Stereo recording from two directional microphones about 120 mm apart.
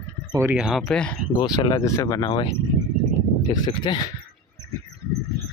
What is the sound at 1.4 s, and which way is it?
Speech, 35° left (ahead or behind).